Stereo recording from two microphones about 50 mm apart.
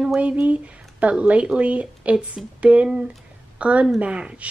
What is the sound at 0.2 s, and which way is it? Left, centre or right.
A woman's voice, right.